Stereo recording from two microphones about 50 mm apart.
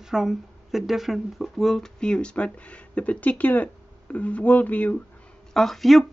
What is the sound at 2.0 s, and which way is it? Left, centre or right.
Speech, centre.